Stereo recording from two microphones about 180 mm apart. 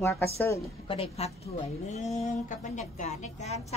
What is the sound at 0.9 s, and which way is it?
A woman's voice, 35° left (ahead or behind).